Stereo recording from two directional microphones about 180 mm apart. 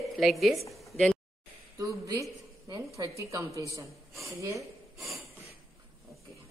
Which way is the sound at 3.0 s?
15° right (ahead or behind).